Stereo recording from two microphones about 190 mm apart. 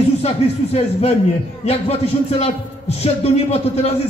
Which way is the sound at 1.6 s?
35° left (ahead or behind).